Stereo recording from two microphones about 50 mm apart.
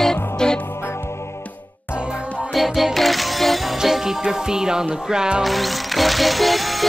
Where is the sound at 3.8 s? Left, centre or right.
Centre.